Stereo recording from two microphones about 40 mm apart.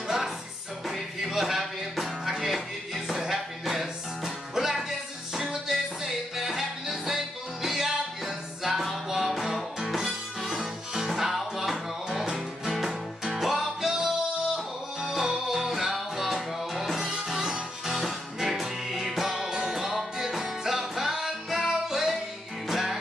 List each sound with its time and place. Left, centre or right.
0.8 s music: centre